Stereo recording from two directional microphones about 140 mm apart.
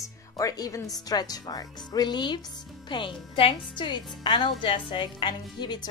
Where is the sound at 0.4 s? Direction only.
25° left (ahead or behind).